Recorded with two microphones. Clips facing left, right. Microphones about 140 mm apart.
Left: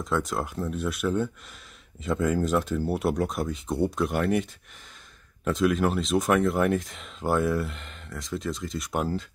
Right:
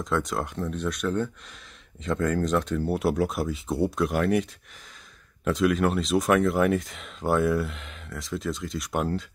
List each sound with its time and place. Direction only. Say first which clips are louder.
0.0 s speech: even; centre (ahead or behind)